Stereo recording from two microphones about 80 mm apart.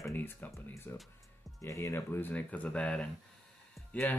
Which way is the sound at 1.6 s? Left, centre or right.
Left.